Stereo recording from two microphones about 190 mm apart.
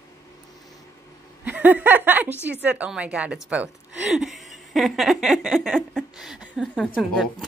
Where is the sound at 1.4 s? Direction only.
10° right (ahead or behind).